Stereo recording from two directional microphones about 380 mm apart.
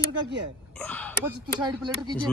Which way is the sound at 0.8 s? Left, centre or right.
Centre.